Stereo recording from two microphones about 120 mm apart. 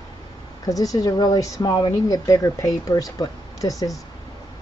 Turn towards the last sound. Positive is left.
turn(degrees=30)  # may be behind; listen again after turning